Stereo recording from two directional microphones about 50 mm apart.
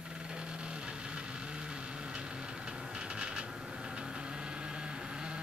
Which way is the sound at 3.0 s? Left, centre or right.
Centre.